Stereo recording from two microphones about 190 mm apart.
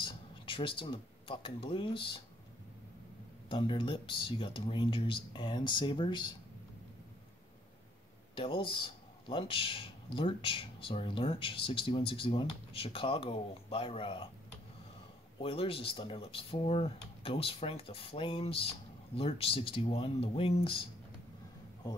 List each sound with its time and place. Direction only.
0.0 s speech: 25° left (ahead or behind)
3.4 s speech: 25° left (ahead or behind)
8.4 s speech: 25° left (ahead or behind)
15.4 s speech: 30° left (ahead or behind)